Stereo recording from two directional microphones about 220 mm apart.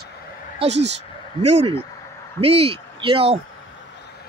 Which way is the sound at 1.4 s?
25° right (ahead or behind).